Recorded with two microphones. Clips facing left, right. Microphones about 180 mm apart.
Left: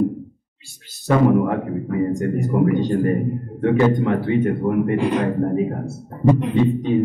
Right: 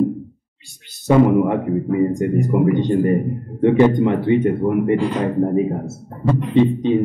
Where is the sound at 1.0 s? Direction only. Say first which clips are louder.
Right 2 dB; 15° right (ahead or behind).